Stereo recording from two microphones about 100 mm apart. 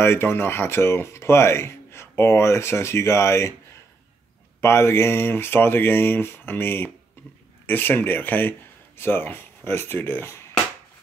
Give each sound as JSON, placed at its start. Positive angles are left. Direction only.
{"t": 0.0, "sound": "speech", "side_deg": 25}
{"t": 4.6, "sound": "speech", "side_deg": 25}